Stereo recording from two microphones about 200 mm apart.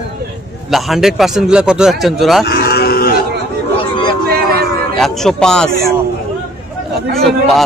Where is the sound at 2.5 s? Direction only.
50° left (ahead or behind).